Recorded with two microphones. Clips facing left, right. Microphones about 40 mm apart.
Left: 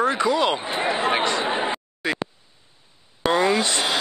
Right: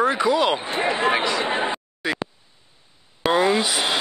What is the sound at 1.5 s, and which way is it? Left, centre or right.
Chatter, centre.